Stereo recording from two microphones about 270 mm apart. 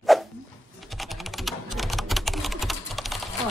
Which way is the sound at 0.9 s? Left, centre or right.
Centre.